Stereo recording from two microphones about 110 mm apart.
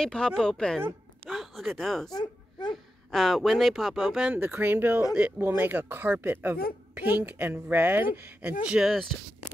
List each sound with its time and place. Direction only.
0.0 s a woman's voice: 5° left (ahead or behind)
2.0 s speech: 35° left (ahead or behind)
2.7 s speech: centre (ahead or behind)
4.4 s speech: 20° right (ahead or behind)